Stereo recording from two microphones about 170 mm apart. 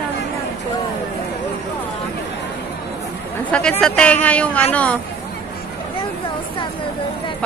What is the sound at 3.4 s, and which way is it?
Speech, 5° left (ahead or behind).